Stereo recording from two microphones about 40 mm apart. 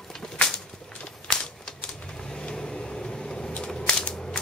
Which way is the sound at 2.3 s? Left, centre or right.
Left.